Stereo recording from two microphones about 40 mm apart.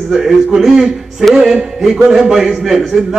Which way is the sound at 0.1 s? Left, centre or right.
Centre.